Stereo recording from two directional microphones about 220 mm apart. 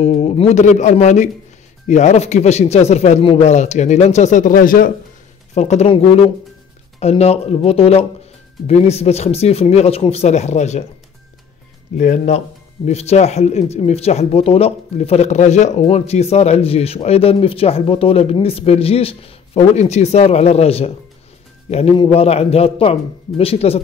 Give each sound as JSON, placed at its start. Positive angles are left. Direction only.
{"t": 0.0, "sound": "a man's voice", "side_deg": 30}
{"t": 12.0, "sound": "speech", "side_deg": 30}